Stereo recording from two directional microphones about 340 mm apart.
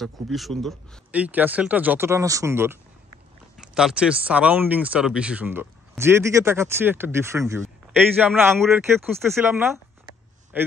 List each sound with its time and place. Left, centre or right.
0.0 s speech: centre